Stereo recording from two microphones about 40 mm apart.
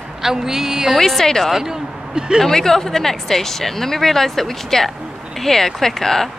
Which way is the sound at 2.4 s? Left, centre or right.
Centre.